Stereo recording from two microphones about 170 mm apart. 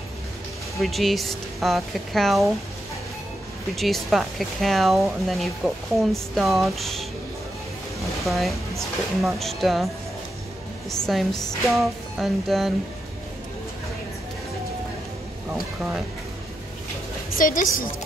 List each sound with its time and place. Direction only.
0.7 s speech: centre (ahead or behind)
3.7 s speech: centre (ahead or behind)
10.9 s speech: centre (ahead or behind)
15.5 s speech: 5° right (ahead or behind)
17.4 s a woman's voice: 55° left (ahead or behind)